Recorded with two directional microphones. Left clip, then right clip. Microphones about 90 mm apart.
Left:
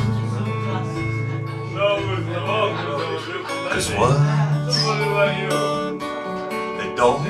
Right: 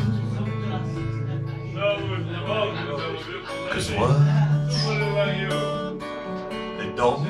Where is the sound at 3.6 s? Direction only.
15° right (ahead or behind).